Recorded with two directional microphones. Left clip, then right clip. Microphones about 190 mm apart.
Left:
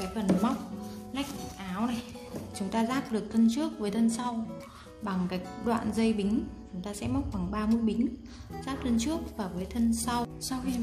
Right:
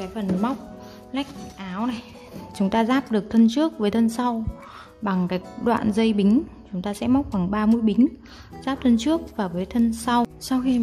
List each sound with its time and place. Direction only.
0.1 s a woman's voice: 50° right (ahead or behind)